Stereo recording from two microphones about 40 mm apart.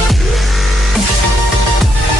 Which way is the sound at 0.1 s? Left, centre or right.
Centre.